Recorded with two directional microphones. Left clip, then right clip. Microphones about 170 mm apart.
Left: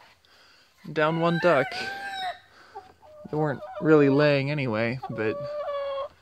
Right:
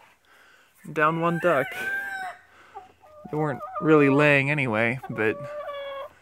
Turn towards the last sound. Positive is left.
turn(degrees=0)  # may be behind; listen again after turning